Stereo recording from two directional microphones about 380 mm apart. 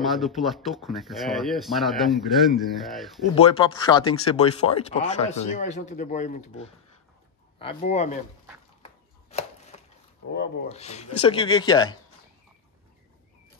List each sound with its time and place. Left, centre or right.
0.0 s speech: centre
3.3 s speech: centre
8.8 s chopping: centre
10.3 s speech: left